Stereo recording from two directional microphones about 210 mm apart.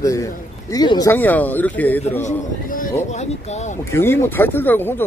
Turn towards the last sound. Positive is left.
turn(degrees=10)  # may be behind; listen again after turning